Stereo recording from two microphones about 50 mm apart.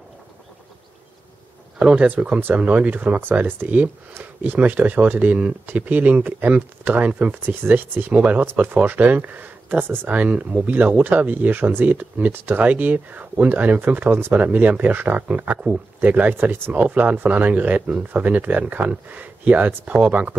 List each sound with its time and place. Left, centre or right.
2.0 s speech: right
3.0 s speech: right
7.4 s speech: right
16.0 s speech: right